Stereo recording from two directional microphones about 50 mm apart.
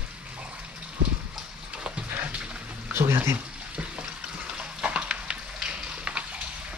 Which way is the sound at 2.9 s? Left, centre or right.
Right.